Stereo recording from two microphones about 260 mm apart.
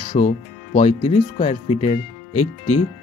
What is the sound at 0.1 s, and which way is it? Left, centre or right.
Speech, left.